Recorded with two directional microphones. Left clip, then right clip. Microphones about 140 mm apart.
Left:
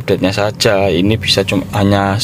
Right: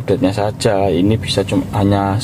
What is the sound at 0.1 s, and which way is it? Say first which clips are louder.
Speech: left 2 dB; 5° left (ahead or behind).